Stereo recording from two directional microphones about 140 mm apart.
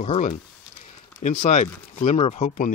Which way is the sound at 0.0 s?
55° left (ahead or behind).